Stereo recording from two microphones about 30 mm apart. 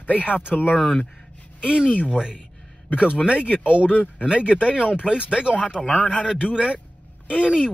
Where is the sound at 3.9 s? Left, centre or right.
Left.